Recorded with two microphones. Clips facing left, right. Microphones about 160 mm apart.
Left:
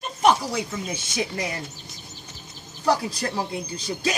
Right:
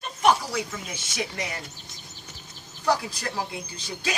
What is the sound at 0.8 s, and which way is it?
Speech, 30° left (ahead or behind).